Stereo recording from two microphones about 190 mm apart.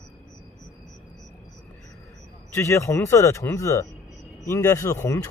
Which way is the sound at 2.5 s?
15° left (ahead or behind).